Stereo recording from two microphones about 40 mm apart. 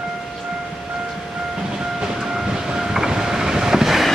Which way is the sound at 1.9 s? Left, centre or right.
Centre.